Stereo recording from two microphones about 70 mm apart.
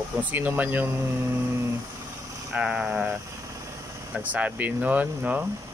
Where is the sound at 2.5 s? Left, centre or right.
Centre.